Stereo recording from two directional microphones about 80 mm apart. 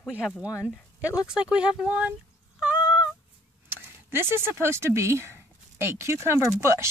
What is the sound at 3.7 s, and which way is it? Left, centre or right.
Speech, right.